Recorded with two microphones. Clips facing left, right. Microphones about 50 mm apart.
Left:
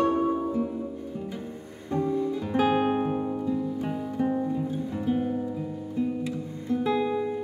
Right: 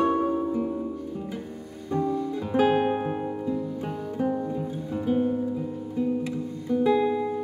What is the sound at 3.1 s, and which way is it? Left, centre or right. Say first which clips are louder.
Music: left 1 dB; centre.